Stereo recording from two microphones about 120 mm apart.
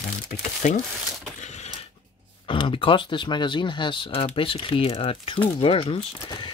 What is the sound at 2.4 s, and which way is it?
Speech, 45° left (ahead or behind).